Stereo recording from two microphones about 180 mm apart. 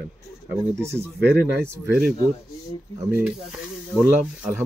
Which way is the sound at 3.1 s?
10° right (ahead or behind).